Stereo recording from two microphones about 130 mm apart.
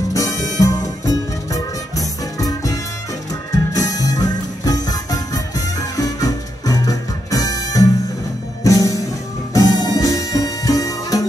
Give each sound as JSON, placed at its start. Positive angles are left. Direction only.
{"t": 0.1, "sound": "music", "side_deg": 25}